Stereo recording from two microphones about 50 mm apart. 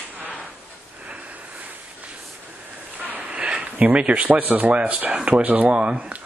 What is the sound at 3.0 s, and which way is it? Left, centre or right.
Speech, right.